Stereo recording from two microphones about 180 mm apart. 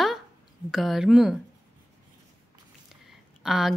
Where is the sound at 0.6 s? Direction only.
Centre (ahead or behind).